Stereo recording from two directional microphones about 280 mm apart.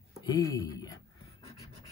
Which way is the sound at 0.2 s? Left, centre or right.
Centre.